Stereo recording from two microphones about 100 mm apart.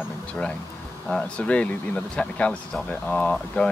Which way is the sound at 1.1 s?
10° left (ahead or behind).